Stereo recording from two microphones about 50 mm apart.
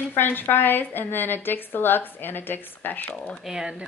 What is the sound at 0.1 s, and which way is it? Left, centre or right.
A woman's voice, left.